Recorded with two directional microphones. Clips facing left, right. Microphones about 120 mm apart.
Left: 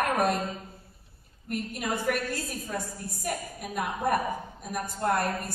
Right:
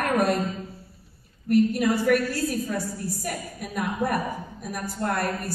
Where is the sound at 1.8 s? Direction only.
20° left (ahead or behind).